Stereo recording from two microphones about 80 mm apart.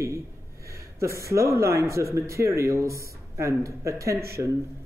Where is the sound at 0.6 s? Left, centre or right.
Right.